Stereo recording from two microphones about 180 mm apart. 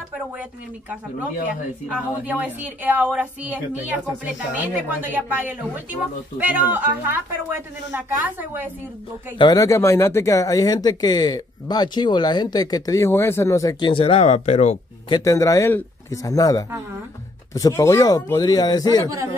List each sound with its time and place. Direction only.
1.9 s speech: 5° right (ahead or behind)
9.4 s speech: 20° left (ahead or behind); by 14.8 s 40° left (ahead or behind)
15.0 s speech: 20° left (ahead or behind)